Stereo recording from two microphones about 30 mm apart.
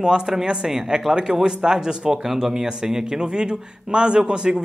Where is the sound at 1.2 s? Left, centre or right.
Right.